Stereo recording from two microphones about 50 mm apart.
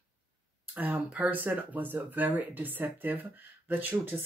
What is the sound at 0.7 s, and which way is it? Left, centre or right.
Speech, right.